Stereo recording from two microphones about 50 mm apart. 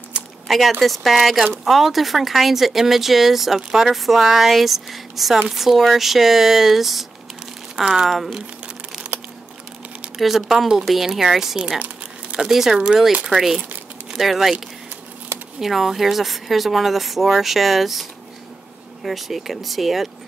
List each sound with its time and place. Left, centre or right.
0.5 s speech: centre
10.1 s speech: centre
15.6 s speech: centre
19.0 s speech: centre